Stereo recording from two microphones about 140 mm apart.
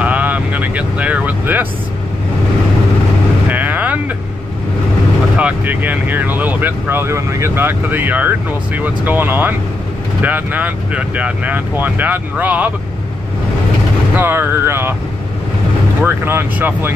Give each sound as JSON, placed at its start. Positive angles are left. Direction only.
{"t": 0.0, "sound": "vehicle", "side_deg": -10}
{"t": 3.4, "sound": "vehicle", "side_deg": -10}
{"t": 5.4, "sound": "speech", "side_deg": -10}
{"t": 14.1, "sound": "speech", "side_deg": -15}
{"t": 16.0, "sound": "speech", "side_deg": -15}